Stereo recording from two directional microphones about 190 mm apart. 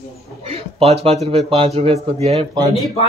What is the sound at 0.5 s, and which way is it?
Speech, 30° right (ahead or behind).